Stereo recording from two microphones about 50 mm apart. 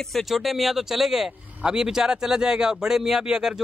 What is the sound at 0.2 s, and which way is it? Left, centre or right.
Speech, centre.